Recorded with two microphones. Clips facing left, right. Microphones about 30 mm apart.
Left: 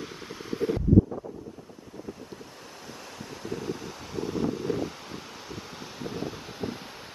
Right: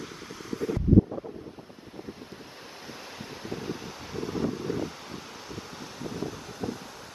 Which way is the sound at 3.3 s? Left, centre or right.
Centre.